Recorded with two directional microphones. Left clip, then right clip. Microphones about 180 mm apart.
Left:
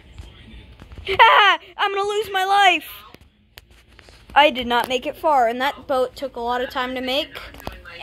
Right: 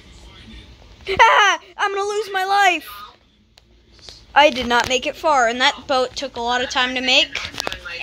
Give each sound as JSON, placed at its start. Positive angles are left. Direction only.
{"t": 1.0, "sound": "speech", "side_deg": -5}
{"t": 4.3, "sound": "speech", "side_deg": -10}
{"t": 4.9, "sound": "a woman's voice", "side_deg": 5}